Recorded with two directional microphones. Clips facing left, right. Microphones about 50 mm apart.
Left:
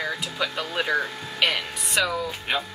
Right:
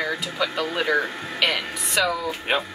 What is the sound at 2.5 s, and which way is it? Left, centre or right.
Speech, right.